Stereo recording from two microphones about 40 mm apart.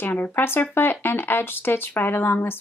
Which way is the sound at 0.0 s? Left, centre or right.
Left.